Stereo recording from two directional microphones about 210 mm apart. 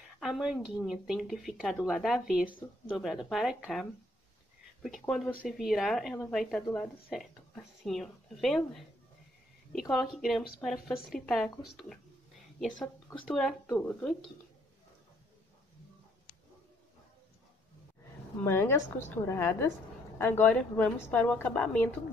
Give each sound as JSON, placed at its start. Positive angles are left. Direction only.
{"t": 0.2, "sound": "speech", "side_deg": 0}
{"t": 4.8, "sound": "speech", "side_deg": 0}
{"t": 12.5, "sound": "speech", "side_deg": 5}
{"t": 18.5, "sound": "a woman's voice", "side_deg": 10}